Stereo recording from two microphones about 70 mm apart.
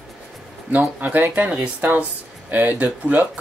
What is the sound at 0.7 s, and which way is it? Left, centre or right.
Speech, right.